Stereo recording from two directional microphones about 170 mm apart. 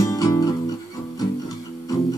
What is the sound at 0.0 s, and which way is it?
Guitar, 20° left (ahead or behind).